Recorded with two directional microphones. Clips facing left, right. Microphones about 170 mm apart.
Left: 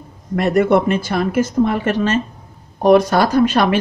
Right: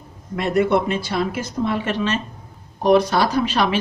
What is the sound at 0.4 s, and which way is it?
Speech, 50° left (ahead or behind).